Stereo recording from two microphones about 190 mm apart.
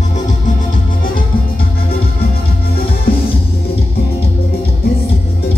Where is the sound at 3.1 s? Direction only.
55° left (ahead or behind).